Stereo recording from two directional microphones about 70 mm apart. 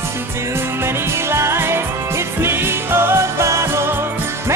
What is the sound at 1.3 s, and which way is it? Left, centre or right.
Music, right.